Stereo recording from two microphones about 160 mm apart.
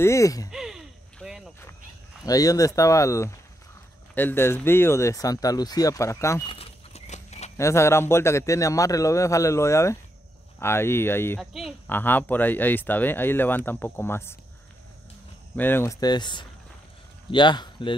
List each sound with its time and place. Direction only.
0.0 s speech: 20° left (ahead or behind)
0.5 s a sound: 5° right (ahead or behind)
2.2 s speech: 20° left (ahead or behind)
6.4 s a sound: 35° left (ahead or behind)
7.5 s speech: 15° left (ahead or behind)
11.3 s speech: centre (ahead or behind)
11.9 s speech: 10° left (ahead or behind)
15.5 s speech: 15° left (ahead or behind); by 17.9 s 30° left (ahead or behind)